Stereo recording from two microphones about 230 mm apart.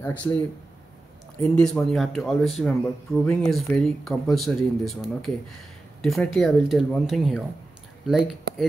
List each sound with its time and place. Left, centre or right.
0.0 s speech: centre
1.4 s speech: centre